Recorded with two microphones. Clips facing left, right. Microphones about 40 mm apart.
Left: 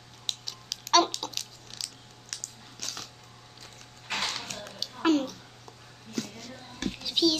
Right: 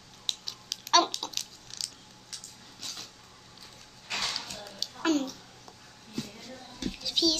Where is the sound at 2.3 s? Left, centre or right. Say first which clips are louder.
Left 4 dB; left.